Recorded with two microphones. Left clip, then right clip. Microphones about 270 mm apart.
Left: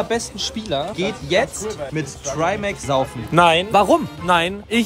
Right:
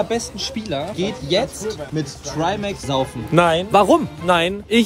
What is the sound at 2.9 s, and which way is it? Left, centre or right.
Speech, centre.